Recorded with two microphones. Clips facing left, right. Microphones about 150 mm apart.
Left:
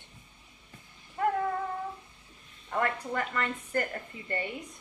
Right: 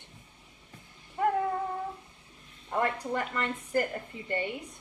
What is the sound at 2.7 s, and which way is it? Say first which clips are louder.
A woman's voice: right 1 dB; 15° right (ahead or behind).